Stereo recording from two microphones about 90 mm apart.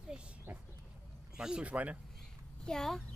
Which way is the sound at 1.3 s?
10° right (ahead or behind).